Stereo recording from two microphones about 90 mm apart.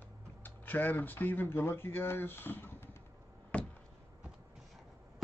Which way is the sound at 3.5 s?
15° left (ahead or behind).